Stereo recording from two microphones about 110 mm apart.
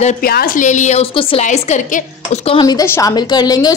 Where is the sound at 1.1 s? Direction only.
55° left (ahead or behind).